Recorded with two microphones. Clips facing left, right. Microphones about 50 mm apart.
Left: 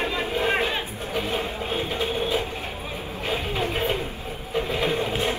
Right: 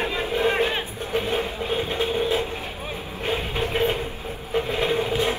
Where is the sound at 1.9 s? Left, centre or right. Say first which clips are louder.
Right 3 dB; right.